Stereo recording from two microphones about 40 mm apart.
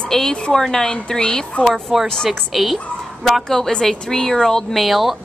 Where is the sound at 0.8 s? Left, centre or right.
Left.